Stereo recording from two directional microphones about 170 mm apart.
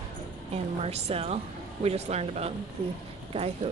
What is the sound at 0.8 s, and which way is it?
Speech, 40° right (ahead or behind).